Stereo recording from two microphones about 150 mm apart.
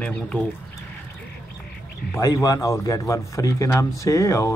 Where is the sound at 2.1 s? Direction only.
20° left (ahead or behind).